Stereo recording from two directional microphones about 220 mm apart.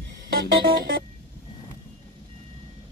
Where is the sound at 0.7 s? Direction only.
40° right (ahead or behind).